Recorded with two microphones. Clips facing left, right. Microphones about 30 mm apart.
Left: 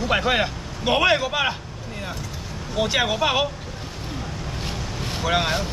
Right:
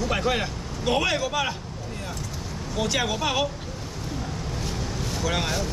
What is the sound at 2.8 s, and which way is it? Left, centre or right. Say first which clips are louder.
Speech: left 4 dB; left.